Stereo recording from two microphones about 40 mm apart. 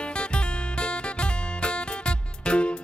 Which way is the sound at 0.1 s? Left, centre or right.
Left.